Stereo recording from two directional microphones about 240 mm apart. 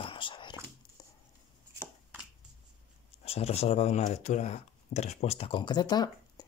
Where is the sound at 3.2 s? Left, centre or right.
Left.